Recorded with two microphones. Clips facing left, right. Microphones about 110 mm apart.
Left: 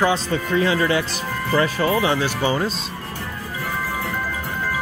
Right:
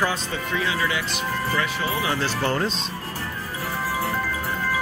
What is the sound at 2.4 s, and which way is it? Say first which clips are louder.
Speech: left 2 dB; 5° left (ahead or behind).